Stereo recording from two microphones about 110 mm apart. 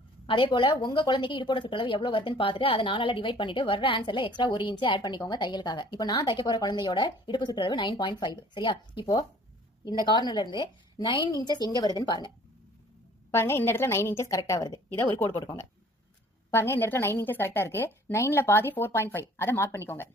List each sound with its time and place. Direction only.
0.3 s a woman's voice: 45° left (ahead or behind)
13.3 s a woman's voice: 20° left (ahead or behind)
16.4 s a woman's voice: 20° left (ahead or behind)